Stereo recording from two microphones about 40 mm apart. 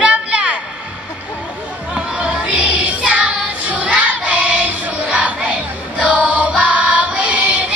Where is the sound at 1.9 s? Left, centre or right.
Right.